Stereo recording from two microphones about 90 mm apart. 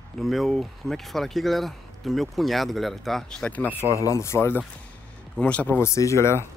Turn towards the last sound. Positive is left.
turn(degrees=30)  # may be behind; listen again after turning